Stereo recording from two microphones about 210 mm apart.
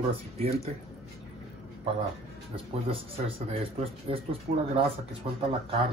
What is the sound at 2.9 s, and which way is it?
Speech, 25° right (ahead or behind).